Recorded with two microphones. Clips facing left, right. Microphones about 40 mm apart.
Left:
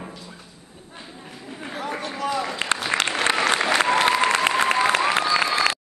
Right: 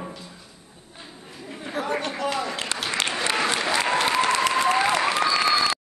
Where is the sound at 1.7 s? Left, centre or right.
Right.